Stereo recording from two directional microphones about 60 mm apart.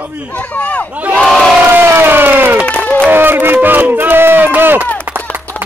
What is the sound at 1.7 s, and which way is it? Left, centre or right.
Speech, right.